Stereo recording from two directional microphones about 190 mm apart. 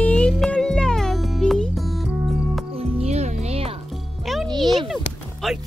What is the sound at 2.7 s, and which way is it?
Music, 35° right (ahead or behind).